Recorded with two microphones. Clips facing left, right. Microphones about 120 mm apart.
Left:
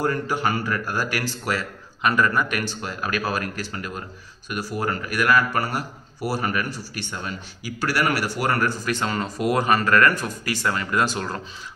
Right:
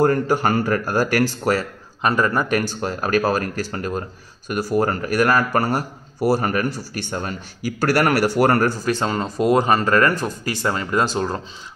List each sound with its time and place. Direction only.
0.0 s a man's voice: 45° right (ahead or behind); by 11.4 s 25° right (ahead or behind)